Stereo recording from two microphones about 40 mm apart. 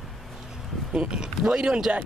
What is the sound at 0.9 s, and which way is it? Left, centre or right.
Speech, right.